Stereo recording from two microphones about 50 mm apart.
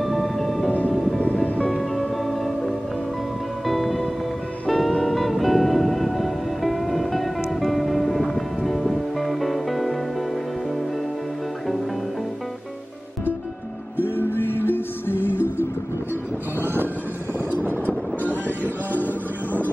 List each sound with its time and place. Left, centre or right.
0.0 s music: centre
1.2 s music: left
1.7 s music: centre
13.9 s music: left
18.3 s music: left